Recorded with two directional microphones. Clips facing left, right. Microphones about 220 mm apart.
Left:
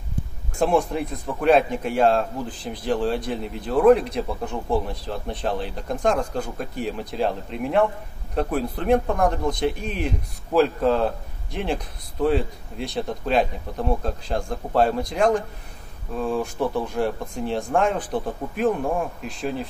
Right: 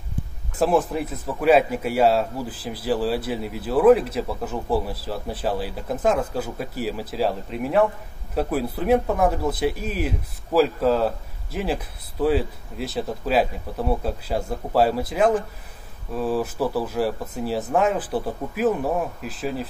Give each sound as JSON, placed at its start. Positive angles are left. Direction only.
{"t": 0.6, "sound": "a man's voice", "side_deg": -5}